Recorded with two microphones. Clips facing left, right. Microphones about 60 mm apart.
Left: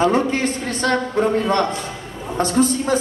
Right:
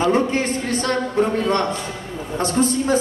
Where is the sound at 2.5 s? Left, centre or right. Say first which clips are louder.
Left 2 dB; right.